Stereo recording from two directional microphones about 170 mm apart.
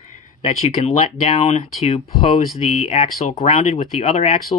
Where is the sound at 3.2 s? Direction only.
45° left (ahead or behind).